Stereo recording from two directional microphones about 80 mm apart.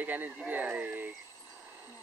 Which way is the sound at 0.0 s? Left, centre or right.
Right.